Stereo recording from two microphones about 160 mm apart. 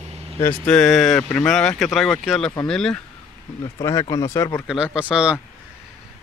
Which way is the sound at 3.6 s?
25° left (ahead or behind).